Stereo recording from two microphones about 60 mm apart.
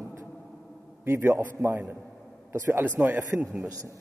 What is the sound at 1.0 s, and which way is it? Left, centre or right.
A man's voice, right.